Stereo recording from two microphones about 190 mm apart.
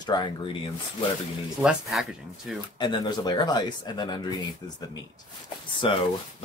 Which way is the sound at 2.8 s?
25° left (ahead or behind).